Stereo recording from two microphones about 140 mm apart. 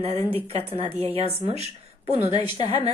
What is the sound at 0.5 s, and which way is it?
Speech, 45° right (ahead or behind).